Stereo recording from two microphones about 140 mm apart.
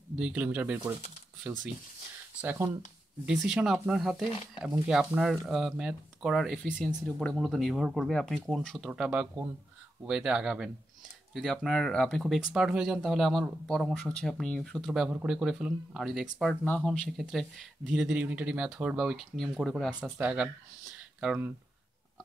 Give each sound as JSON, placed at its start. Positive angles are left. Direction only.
{"t": 0.1, "sound": "speech", "side_deg": -10}
{"t": 2.4, "sound": "speech", "side_deg": -20}
{"t": 3.3, "sound": "speech", "side_deg": -5}
{"t": 20.0, "sound": "speech", "side_deg": -10}